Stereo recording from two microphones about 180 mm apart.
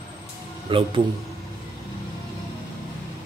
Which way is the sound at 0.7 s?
30° right (ahead or behind).